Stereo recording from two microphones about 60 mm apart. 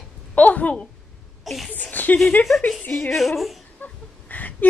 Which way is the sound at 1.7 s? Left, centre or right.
Left.